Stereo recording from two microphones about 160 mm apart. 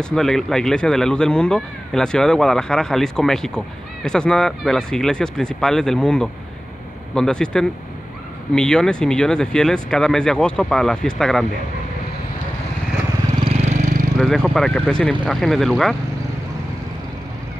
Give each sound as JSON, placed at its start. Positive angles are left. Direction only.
{"t": 0.0, "sound": "speech", "side_deg": 5}
{"t": 13.4, "sound": "vehicle", "side_deg": -40}
{"t": 14.1, "sound": "speech", "side_deg": 5}